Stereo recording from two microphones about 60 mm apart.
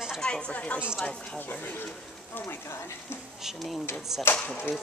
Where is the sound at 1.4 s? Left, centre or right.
Left.